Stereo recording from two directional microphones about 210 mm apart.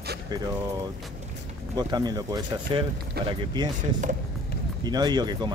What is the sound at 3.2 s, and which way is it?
Speech, 50° right (ahead or behind).